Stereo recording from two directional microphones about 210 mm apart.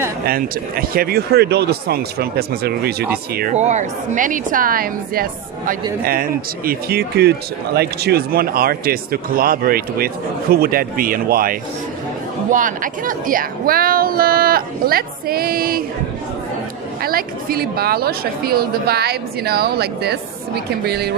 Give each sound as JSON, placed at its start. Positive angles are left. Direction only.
{"t": 0.3, "sound": "speech", "side_deg": -45}
{"t": 3.3, "sound": "a woman's voice", "side_deg": -35}
{"t": 17.0, "sound": "speech", "side_deg": -45}